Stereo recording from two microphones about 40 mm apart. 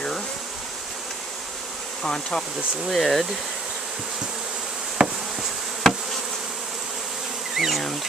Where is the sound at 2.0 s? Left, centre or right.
Centre.